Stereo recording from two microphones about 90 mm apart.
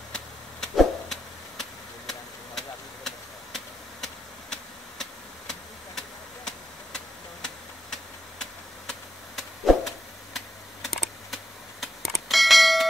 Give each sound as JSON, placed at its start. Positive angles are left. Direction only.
{"t": 0.1, "sound": "vehicle", "side_deg": 5}
{"t": 5.5, "sound": "a sound", "side_deg": 5}
{"t": 10.3, "sound": "computer keyboard", "side_deg": 0}